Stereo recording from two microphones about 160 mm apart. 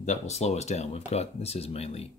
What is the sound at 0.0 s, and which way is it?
Speech, 45° left (ahead or behind).